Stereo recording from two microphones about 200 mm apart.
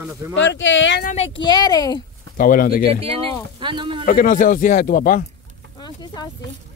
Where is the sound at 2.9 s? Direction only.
30° right (ahead or behind).